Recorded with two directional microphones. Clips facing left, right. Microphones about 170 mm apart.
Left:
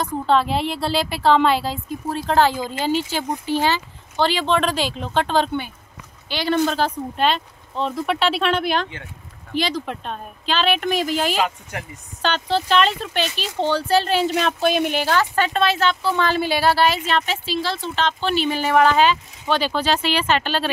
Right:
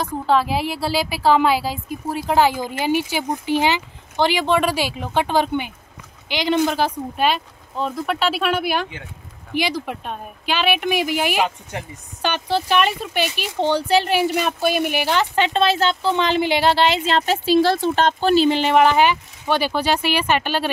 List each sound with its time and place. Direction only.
0.0 s speech: 5° right (ahead or behind)
11.7 s speech: 25° right (ahead or behind)
12.2 s speech: 15° right (ahead or behind); by 17.4 s 30° right (ahead or behind)
17.5 s speech: 50° right (ahead or behind); by 20.7 s 15° right (ahead or behind)